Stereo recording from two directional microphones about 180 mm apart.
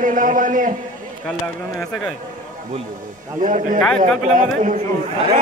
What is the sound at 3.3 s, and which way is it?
A man's voice, 45° right (ahead or behind).